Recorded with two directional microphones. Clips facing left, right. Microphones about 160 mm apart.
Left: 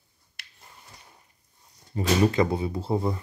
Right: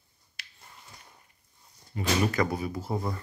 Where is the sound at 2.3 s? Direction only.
25° left (ahead or behind).